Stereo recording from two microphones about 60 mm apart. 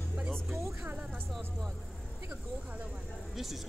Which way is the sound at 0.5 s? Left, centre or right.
Right.